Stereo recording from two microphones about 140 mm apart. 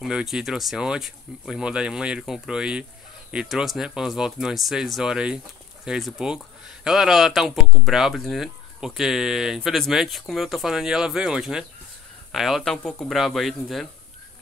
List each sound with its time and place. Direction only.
0.0 s speech: 5° right (ahead or behind)